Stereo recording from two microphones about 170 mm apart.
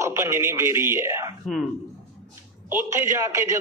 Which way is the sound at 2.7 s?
15° right (ahead or behind).